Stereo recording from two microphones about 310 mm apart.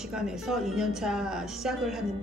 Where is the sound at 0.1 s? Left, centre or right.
Centre.